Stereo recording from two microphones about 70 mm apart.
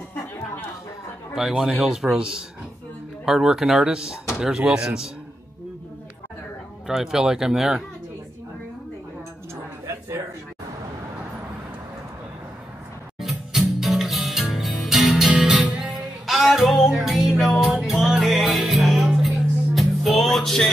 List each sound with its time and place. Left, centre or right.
1.3 s a man's voice: centre
6.9 s a man's voice: centre
9.8 s a sound: right
13.2 s music: centre